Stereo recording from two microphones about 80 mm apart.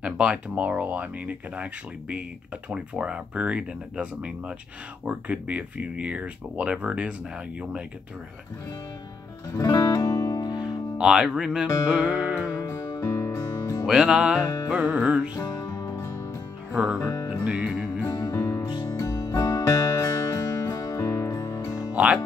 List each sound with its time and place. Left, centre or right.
0.0 s speech: centre
9.7 s music: left
11.0 s speech: centre
11.9 s music: centre
12.6 s music: left
13.0 s music: left
13.8 s speech: centre
15.4 s music: left
16.7 s speech: centre
17.6 s speech: centre
18.3 s music: left
21.9 s speech: centre